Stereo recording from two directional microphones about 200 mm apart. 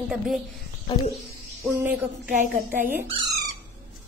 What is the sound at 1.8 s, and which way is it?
Speech, 10° right (ahead or behind).